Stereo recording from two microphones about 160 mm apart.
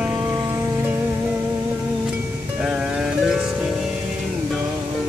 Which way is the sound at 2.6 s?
5° right (ahead or behind).